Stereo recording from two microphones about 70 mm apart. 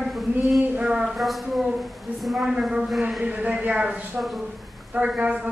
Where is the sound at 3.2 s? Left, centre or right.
Right.